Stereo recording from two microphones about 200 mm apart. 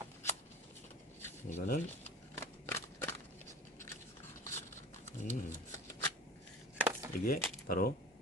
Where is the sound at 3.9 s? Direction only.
10° left (ahead or behind).